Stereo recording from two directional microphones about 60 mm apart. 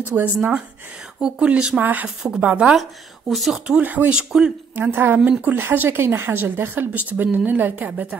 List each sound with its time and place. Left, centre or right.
0.1 s speech: right
1.8 s speech: right
2.0 s speech: centre
2.7 s speech: centre
3.5 s speech: right
4.1 s speech: centre
4.7 s speech: right